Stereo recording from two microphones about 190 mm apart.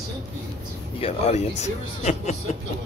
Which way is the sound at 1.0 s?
35° left (ahead or behind).